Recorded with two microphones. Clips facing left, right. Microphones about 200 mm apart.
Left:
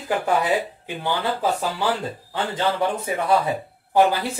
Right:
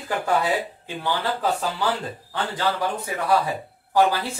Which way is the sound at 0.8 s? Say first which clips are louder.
Left 1 dB; 10° left (ahead or behind).